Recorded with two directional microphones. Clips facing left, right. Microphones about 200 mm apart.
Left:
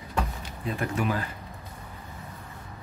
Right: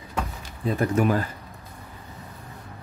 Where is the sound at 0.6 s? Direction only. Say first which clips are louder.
Right 6 dB; 40° right (ahead or behind).